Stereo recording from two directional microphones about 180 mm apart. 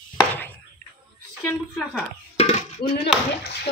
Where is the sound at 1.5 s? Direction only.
5° left (ahead or behind).